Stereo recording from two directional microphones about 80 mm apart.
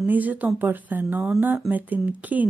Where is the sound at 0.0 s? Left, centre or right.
Right.